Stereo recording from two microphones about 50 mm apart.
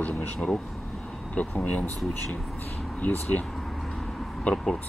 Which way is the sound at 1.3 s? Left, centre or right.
Left.